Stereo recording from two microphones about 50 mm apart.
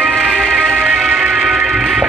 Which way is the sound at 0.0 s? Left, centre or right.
Right.